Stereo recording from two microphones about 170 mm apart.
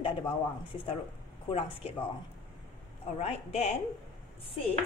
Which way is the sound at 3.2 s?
40° left (ahead or behind).